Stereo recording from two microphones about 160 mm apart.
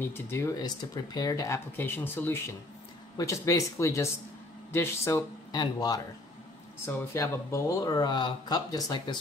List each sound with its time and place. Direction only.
0.0 s speech: 15° left (ahead or behind)